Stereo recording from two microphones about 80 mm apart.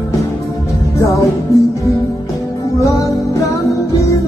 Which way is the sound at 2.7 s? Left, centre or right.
Left.